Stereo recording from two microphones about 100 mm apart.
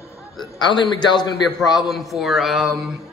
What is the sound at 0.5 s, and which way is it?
Speech, 50° left (ahead or behind).